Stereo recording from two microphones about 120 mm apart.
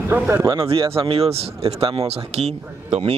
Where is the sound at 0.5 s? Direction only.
45° right (ahead or behind).